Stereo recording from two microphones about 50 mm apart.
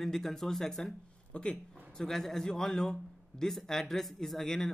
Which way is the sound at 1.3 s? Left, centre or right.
Left.